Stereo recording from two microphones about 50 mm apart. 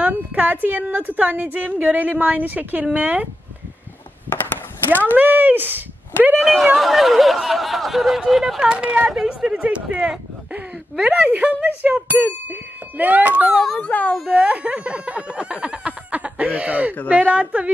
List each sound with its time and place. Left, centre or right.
0.0 s a woman's voice: right
4.3 s a sound: left
5.1 s a woman's voice: right
6.4 s speech: centre
8.5 s speech: right
9.1 s speech: centre
9.6 s speech: right
10.5 s a sound: right
11.2 s a woman's voice: right
13.7 s speech: left
14.3 s a woman's voice: right